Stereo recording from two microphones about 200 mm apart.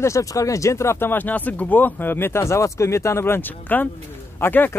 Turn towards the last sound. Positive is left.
turn(degrees=10)  # may be behind; listen again after turning